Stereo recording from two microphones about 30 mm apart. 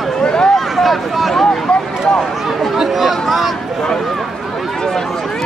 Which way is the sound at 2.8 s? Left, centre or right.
Centre.